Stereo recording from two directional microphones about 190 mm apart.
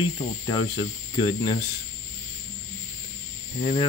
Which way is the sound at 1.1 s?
25° left (ahead or behind).